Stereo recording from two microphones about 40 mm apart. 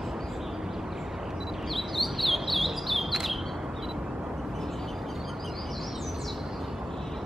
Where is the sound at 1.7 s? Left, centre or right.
Centre.